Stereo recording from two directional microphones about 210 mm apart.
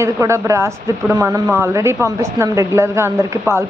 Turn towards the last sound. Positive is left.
turn(degrees=-15)  # may be behind; listen again after turning